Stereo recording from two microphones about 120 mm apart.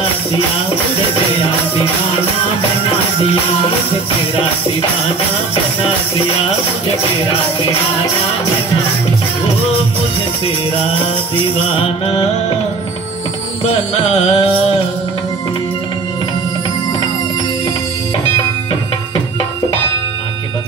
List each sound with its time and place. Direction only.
13.7 s music: 55° left (ahead or behind)